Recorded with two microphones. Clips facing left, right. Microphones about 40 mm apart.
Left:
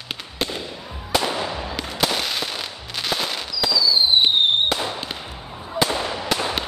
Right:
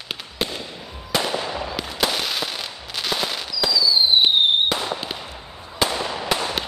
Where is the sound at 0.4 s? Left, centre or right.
Centre.